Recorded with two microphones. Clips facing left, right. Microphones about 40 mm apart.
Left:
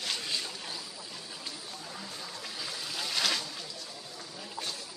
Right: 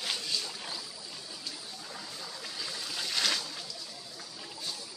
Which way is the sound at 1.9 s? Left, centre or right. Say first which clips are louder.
Even; centre.